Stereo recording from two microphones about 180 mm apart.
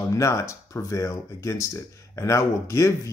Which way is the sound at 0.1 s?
15° left (ahead or behind).